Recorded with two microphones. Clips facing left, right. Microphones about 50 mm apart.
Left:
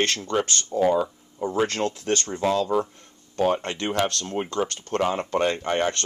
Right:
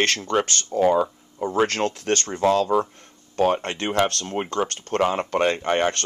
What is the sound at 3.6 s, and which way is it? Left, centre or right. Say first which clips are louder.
Speech: right 3 dB; right.